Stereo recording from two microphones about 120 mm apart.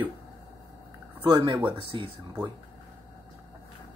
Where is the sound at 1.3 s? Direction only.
45° right (ahead or behind).